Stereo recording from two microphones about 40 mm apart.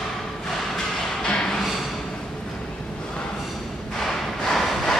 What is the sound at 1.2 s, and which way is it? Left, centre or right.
Music, left.